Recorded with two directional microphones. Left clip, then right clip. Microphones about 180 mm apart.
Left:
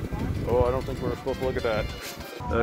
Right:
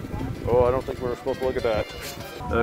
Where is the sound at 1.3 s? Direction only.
5° right (ahead or behind).